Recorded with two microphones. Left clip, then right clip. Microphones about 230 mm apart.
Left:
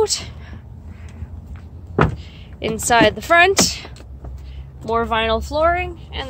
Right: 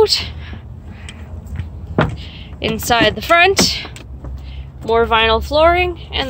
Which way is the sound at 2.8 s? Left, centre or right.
Centre.